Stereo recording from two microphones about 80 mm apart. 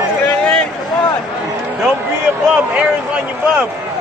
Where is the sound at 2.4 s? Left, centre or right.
Centre.